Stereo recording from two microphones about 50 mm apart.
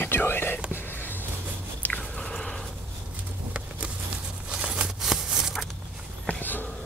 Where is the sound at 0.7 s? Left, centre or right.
Left.